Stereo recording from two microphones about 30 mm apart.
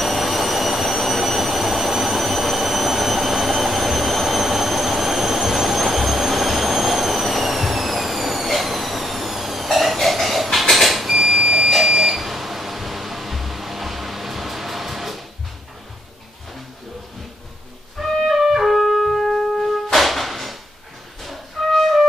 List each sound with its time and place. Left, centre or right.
0.0 s train: centre
11.2 s a sound: centre
11.8 s smoke detector: right
12.1 s music: centre
18.0 s music: centre
18.4 s music: centre
18.7 s music: centre